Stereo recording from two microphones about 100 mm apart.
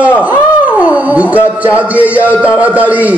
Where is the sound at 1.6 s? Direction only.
15° right (ahead or behind).